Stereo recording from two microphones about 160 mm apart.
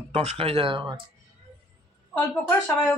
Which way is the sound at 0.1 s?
40° right (ahead or behind).